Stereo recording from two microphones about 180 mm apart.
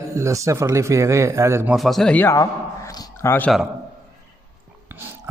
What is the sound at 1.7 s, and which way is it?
Speech, centre (ahead or behind).